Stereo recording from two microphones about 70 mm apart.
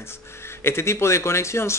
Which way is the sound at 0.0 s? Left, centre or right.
Left.